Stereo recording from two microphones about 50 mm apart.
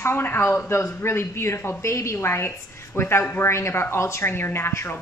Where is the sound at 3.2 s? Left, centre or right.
Left.